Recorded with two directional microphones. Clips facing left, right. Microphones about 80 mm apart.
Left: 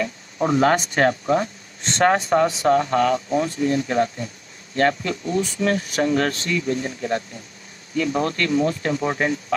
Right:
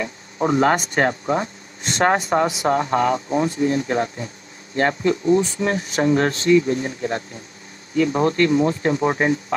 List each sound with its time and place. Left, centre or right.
0.4 s speech: centre